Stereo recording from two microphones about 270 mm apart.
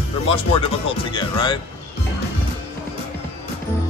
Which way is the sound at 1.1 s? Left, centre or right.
Centre.